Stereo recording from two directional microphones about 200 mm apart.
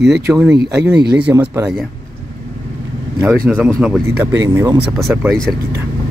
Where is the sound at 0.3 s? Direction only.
10° right (ahead or behind).